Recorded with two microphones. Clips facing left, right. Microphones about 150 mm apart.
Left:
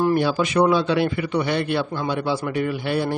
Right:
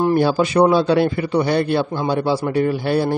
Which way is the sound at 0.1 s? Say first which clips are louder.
Right 4 dB; 35° right (ahead or behind).